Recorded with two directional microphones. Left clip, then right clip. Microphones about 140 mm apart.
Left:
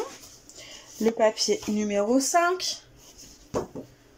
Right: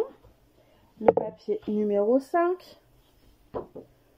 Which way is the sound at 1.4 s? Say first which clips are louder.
Left 1 dB; 35° right (ahead or behind).